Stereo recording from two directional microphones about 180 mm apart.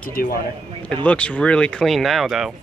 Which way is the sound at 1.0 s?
5° left (ahead or behind).